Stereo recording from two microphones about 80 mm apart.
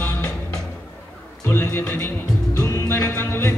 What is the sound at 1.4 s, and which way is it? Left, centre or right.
Music, left.